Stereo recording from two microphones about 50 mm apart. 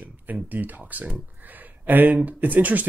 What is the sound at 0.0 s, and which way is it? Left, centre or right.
Speech, right.